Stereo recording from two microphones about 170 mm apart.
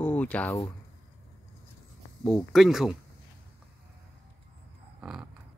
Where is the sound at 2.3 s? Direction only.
Centre (ahead or behind).